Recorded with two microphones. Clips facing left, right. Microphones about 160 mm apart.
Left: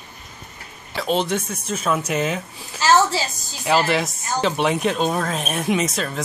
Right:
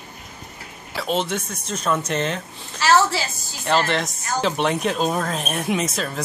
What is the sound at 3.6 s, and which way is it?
Speech, 5° left (ahead or behind).